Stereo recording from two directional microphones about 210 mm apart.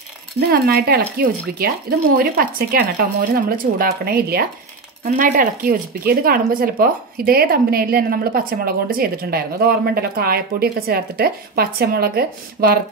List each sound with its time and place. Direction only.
0.4 s speech: 45° right (ahead or behind)